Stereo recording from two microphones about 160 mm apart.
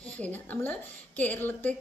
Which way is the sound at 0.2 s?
10° left (ahead or behind).